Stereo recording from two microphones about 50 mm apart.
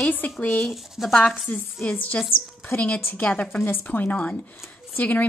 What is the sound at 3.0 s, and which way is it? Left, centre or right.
A woman's voice, left.